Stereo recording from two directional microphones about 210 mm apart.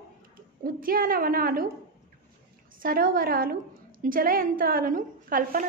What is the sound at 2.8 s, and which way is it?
A woman's voice, 45° right (ahead or behind).